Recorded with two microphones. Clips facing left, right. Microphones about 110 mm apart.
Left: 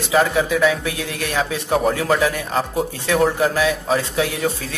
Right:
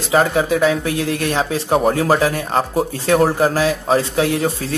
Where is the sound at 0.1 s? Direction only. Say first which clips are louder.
Right 2 dB; 35° right (ahead or behind).